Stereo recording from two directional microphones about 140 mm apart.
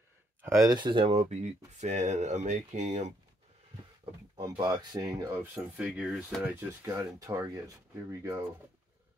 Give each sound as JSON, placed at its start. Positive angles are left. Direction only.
{"t": 0.7, "sound": "speech", "side_deg": -30}
{"t": 1.1, "sound": "speech", "side_deg": -55}
{"t": 4.4, "sound": "speech", "side_deg": -30}
{"t": 6.4, "sound": "speech", "side_deg": -20}